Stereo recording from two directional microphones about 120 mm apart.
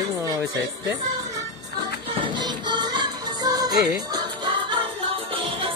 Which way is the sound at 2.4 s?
40° right (ahead or behind).